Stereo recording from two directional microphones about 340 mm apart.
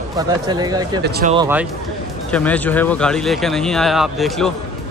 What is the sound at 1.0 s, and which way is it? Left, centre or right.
Speech, right.